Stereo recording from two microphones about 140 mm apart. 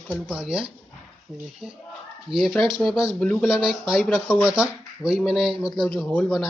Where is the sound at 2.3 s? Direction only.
Centre (ahead or behind).